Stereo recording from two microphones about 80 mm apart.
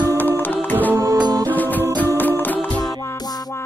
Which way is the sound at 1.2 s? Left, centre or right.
Right.